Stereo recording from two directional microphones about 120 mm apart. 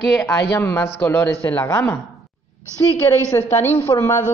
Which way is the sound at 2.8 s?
35° left (ahead or behind).